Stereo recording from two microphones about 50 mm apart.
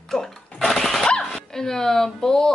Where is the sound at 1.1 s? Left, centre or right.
Centre.